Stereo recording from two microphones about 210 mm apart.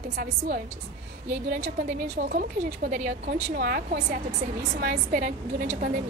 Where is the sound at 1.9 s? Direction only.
45° right (ahead or behind).